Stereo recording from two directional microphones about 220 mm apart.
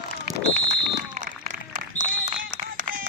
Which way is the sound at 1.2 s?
35° right (ahead or behind).